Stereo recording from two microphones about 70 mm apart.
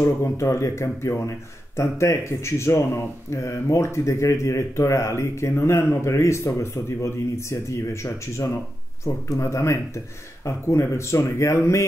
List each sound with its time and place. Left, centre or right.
0.0 s speech: left